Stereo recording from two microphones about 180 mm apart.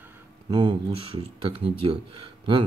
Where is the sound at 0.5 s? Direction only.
25° right (ahead or behind).